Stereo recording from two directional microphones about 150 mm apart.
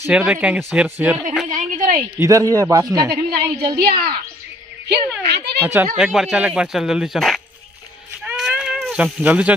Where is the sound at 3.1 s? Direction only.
90° right.